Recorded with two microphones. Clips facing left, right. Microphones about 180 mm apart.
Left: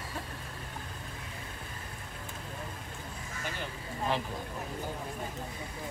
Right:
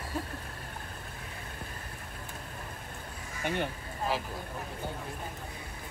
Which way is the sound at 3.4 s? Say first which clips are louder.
Right 8 dB; 60° right (ahead or behind).